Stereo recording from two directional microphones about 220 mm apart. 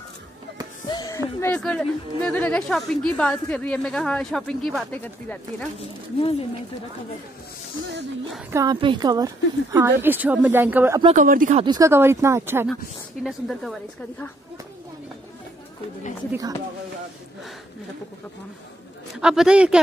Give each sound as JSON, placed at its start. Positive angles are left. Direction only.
{"t": 0.8, "sound": "speech", "side_deg": 20}
{"t": 8.5, "sound": "speech", "side_deg": -15}
{"t": 11.0, "sound": "speech", "side_deg": -25}
{"t": 11.2, "sound": "speech", "side_deg": -35}
{"t": 11.6, "sound": "speech", "side_deg": -15}
{"t": 13.2, "sound": "speech", "side_deg": 0}
{"t": 16.3, "sound": "speech", "side_deg": -15}
{"t": 19.1, "sound": "speech", "side_deg": -5}